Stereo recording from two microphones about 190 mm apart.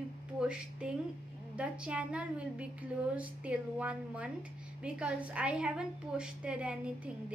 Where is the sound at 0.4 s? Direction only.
5° right (ahead or behind).